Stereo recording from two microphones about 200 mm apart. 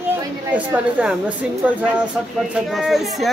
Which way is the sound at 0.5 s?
5° right (ahead or behind).